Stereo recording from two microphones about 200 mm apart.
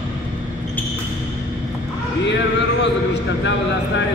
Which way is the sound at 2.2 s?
60° left (ahead or behind).